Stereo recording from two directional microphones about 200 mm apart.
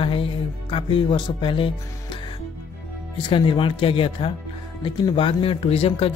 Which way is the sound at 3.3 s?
25° left (ahead or behind).